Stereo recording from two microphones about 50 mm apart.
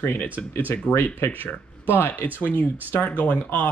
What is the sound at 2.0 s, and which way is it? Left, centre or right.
Speech, left.